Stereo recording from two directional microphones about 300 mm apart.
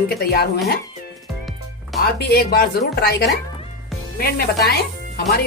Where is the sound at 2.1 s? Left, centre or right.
Left.